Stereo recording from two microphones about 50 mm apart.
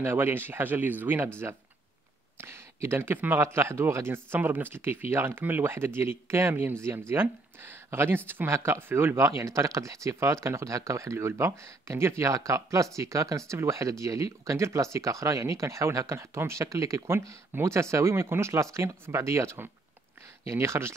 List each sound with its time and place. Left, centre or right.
0.0 s speech: right
4.4 s speech: right
6.8 s speech: right
10.0 s speech: right
17.6 s speech: right